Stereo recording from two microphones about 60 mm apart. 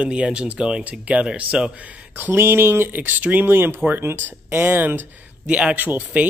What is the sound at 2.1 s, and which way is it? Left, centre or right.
Speech, right.